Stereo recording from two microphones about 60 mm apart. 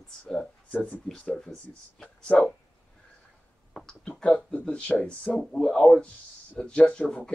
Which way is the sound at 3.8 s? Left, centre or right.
Centre.